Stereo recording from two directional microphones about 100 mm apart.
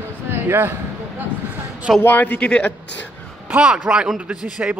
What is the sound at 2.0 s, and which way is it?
Speech, 20° left (ahead or behind).